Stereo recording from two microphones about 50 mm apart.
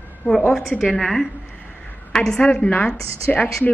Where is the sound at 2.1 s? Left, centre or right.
Centre.